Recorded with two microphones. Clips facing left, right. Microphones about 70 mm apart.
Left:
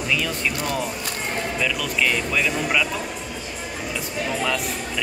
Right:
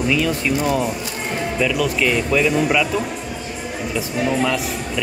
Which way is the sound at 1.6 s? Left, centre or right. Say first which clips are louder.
Right 6 dB; centre.